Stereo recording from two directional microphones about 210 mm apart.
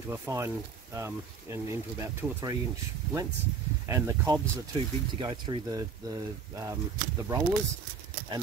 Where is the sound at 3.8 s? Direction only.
15° right (ahead or behind).